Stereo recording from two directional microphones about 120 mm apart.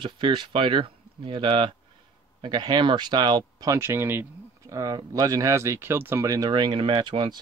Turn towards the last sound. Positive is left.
turn(degrees=-45)  # may be behind; listen again after turning